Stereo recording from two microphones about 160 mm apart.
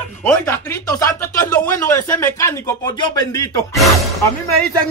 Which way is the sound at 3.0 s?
25° left (ahead or behind).